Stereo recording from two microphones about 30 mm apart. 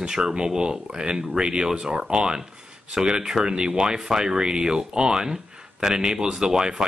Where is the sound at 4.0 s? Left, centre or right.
Centre.